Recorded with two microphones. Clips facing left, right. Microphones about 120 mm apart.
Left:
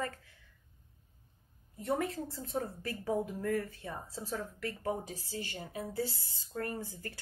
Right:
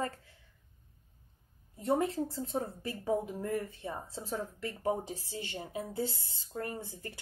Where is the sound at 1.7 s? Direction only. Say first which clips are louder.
Right 4 dB; 25° right (ahead or behind).